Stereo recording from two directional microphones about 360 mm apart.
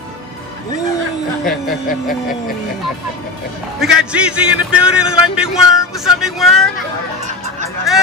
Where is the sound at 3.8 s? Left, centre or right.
Centre.